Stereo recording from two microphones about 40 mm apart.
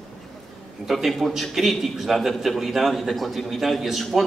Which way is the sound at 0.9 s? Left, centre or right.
Centre.